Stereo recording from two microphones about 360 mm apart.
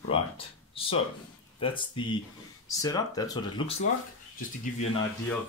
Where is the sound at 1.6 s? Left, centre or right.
Centre.